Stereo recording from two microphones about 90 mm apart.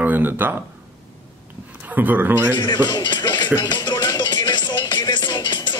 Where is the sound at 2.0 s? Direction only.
20° right (ahead or behind).